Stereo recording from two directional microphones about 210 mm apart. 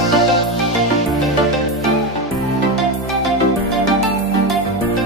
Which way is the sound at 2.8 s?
Centre (ahead or behind).